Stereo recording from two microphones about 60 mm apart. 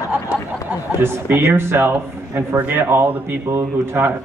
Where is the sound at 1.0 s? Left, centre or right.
Right.